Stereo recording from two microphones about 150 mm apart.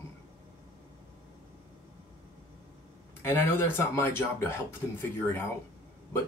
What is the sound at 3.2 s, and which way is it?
Speech, 15° left (ahead or behind).